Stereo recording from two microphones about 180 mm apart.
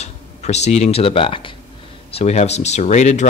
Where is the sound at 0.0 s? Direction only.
35° left (ahead or behind).